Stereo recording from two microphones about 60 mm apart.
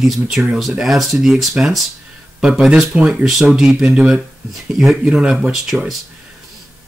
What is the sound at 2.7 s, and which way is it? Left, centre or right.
Speech, centre.